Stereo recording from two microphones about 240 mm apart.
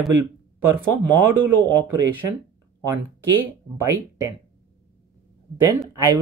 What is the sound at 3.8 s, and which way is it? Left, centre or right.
Speech, centre.